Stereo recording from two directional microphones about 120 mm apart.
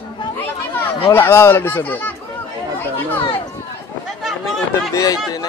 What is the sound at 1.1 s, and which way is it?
Speech, 20° left (ahead or behind).